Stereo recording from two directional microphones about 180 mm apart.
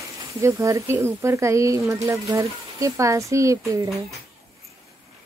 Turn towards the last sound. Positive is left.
turn(degrees=-15)  # may be behind; listen again after turning